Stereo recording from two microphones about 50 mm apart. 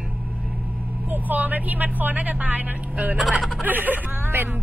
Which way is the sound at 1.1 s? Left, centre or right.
Right.